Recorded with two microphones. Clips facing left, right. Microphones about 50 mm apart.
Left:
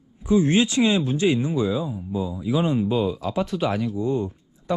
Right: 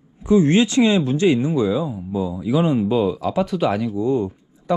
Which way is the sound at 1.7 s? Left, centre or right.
Right.